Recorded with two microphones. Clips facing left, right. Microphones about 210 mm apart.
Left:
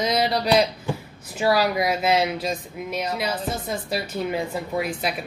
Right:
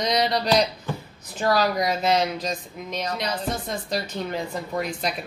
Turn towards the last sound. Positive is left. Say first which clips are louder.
# left 2 dB
turn(degrees=5)  # may be behind; listen again after turning